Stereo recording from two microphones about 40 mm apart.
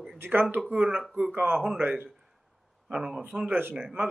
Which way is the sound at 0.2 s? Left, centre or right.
Right.